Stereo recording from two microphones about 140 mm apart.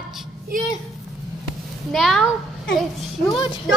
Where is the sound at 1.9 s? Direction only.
Centre (ahead or behind).